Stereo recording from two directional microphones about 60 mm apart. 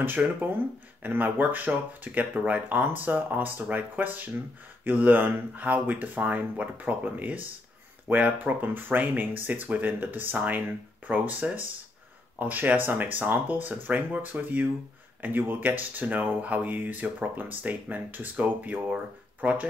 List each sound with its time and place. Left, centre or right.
0.0 s speech: right